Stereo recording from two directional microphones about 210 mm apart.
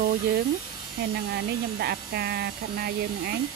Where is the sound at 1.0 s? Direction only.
50° right (ahead or behind).